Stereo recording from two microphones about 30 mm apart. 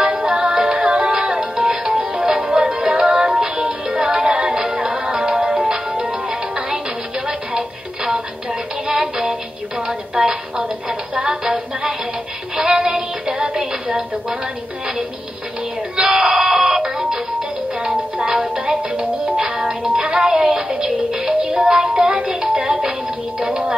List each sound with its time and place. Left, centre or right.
0.3 s music: right
7.2 s music: right
16.0 s music: right